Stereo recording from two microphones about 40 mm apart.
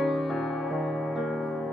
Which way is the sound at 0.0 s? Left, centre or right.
Centre.